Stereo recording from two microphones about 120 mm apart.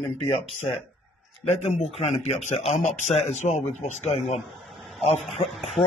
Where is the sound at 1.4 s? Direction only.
70° left (ahead or behind).